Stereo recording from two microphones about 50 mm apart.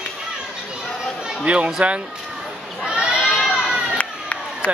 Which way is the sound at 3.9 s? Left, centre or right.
Left.